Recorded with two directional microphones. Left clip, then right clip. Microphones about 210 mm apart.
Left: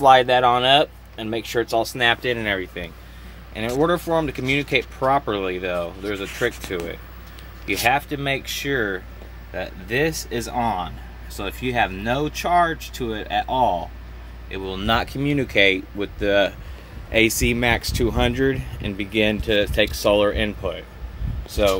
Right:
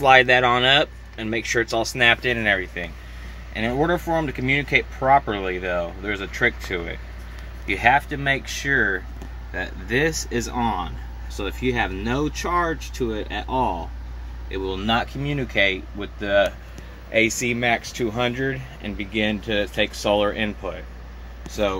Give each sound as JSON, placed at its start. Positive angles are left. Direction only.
{"t": 0.0, "sound": "speech", "side_deg": 5}